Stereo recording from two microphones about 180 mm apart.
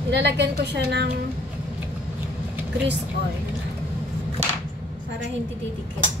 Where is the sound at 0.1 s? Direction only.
65° right (ahead or behind).